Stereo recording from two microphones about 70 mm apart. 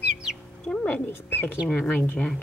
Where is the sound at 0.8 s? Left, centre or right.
Left.